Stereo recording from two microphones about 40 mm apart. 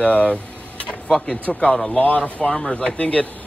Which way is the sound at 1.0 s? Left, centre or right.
Centre.